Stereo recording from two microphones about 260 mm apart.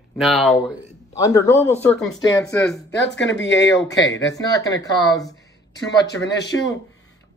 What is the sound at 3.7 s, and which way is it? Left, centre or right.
Speech, centre.